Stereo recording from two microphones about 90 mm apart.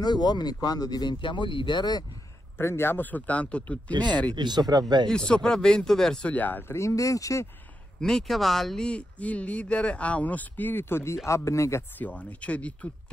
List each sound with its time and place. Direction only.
0.0 s speech: 50° left (ahead or behind)
2.5 s speech: 25° left (ahead or behind)
4.4 s speech: 55° right (ahead or behind)
5.0 s speech: 10° left (ahead or behind)
6.3 s speech: 20° left (ahead or behind)
6.8 s speech: 35° left (ahead or behind)
8.0 s speech: 5° left (ahead or behind); by 11.8 s 35° left (ahead or behind)
12.0 s speech: 15° left (ahead or behind)